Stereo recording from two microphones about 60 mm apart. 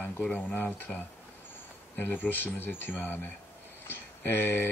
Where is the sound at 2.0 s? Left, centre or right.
Left.